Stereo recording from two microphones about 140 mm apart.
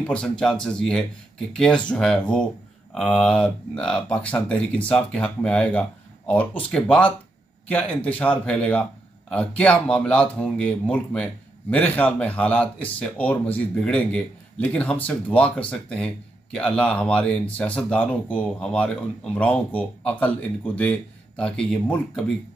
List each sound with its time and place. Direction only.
0.0 s speech: 5° left (ahead or behind)